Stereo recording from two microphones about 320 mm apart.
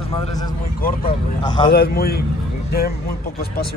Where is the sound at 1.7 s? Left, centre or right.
Left.